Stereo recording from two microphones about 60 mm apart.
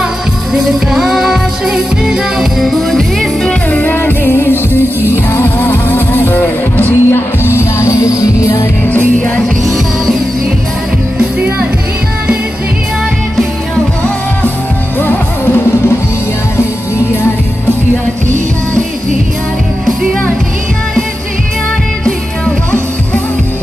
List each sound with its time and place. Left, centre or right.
0.0 s music: centre
3.9 s music: left
8.8 s music: left
15.0 s music: left